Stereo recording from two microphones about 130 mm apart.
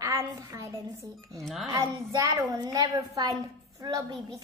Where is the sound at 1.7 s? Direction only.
25° right (ahead or behind).